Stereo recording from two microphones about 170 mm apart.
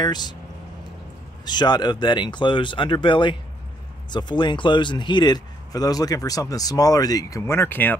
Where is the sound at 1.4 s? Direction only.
25° left (ahead or behind).